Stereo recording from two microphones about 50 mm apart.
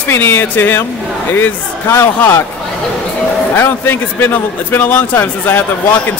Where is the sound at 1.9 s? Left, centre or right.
Left.